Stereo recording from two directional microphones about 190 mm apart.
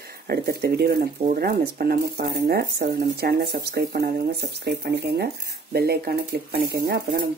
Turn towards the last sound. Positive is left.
turn(degrees=-55)  # may be behind; listen again after turning